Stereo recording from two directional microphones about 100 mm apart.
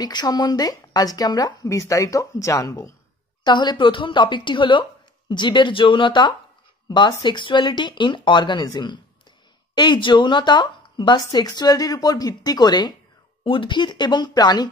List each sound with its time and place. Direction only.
0.0 s speech: 45° left (ahead or behind)
3.4 s speech: 50° left (ahead or behind)
13.4 s speech: 60° left (ahead or behind); by 14.7 s 45° left (ahead or behind)